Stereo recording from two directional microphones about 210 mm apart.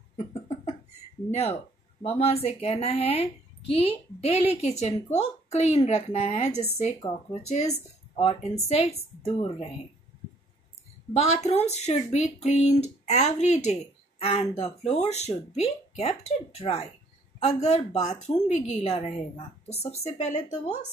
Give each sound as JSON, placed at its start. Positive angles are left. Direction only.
{"t": 1.3, "sound": "a woman's voice", "side_deg": 30}
{"t": 11.1, "sound": "a woman's voice", "side_deg": 30}